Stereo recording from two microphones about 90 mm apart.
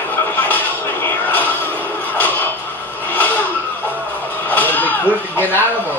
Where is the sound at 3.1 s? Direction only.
20° left (ahead or behind).